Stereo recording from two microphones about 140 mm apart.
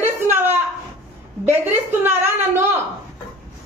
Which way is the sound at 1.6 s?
15° right (ahead or behind).